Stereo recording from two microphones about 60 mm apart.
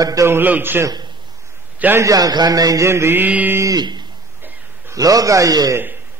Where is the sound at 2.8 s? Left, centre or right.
Right.